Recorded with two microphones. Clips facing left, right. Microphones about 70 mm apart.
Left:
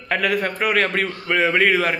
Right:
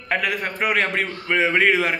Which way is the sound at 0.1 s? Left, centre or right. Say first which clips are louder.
Left 3 dB; centre.